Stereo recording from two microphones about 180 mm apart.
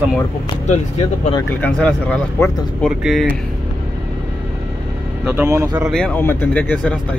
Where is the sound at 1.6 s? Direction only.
5° left (ahead or behind).